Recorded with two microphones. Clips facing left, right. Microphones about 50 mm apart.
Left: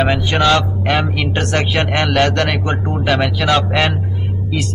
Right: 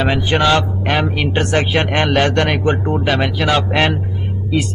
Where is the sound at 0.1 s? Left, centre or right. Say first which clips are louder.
Even; centre.